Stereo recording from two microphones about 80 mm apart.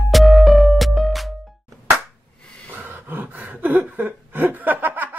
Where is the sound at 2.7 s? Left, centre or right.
Right.